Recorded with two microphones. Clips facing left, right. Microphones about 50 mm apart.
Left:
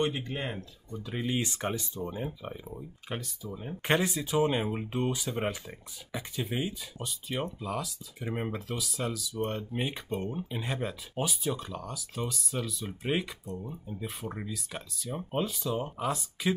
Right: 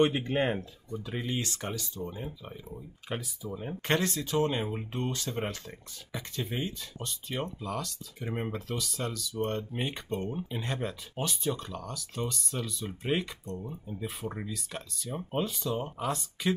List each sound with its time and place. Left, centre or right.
0.0 s speech: right
0.9 s speech: centre
1.2 s speech: centre
3.1 s speech: centre
3.8 s speech: centre